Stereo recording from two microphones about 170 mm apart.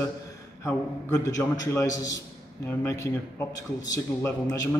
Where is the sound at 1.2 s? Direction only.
20° left (ahead or behind).